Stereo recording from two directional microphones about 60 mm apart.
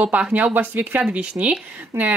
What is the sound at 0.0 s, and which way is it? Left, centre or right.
Speech, right.